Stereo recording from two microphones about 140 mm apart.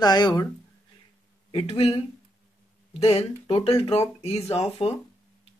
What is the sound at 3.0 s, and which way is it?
Speech, 45° left (ahead or behind).